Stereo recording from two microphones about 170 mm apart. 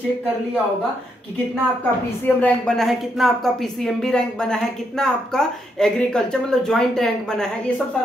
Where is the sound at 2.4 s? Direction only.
5° left (ahead or behind).